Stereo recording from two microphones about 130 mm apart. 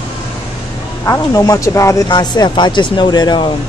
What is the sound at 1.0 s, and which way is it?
Speech, 25° left (ahead or behind).